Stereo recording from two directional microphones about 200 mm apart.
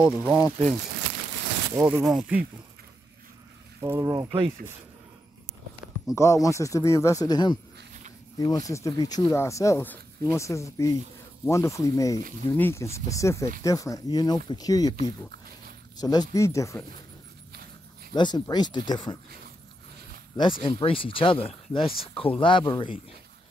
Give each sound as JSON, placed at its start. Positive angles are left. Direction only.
{"t": 0.0, "sound": "speech", "side_deg": -5}
{"t": 1.8, "sound": "speech", "side_deg": -10}
{"t": 2.0, "sound": "speech", "side_deg": 0}
{"t": 3.8, "sound": "speech", "side_deg": -15}
{"t": 6.1, "sound": "speech", "side_deg": 15}
{"t": 16.0, "sound": "speech", "side_deg": 20}
{"t": 18.1, "sound": "speech", "side_deg": 20}
{"t": 20.6, "sound": "speech", "side_deg": 25}